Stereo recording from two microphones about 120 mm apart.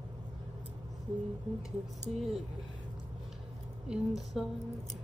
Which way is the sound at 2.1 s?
Centre (ahead or behind).